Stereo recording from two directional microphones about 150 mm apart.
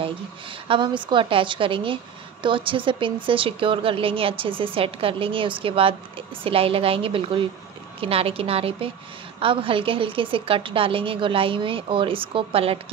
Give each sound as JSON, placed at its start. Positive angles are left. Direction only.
{"t": 0.0, "sound": "speech", "side_deg": -35}